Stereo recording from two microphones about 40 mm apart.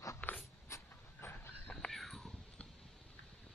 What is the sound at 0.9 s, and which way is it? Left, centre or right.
Train, left.